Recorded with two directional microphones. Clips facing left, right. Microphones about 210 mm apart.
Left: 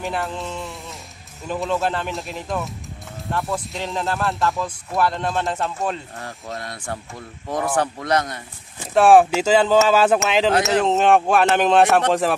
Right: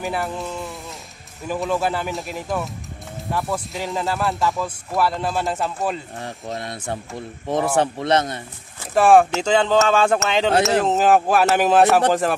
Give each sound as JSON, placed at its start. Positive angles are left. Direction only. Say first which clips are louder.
{"t": 0.0, "sound": "speech", "louder": "right 1 dB", "side_deg": -5}
{"t": 6.6, "sound": "speech", "louder": "right 2 dB", "side_deg": -25}
{"t": 8.9, "sound": "speech", "louder": "left 1 dB", "side_deg": 0}